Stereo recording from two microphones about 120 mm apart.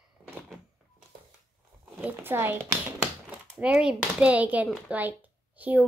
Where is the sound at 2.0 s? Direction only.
15° right (ahead or behind).